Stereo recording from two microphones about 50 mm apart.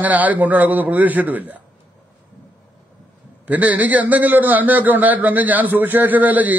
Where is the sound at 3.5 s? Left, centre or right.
Right.